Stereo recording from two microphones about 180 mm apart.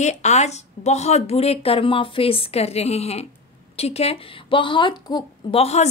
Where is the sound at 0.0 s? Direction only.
40° left (ahead or behind).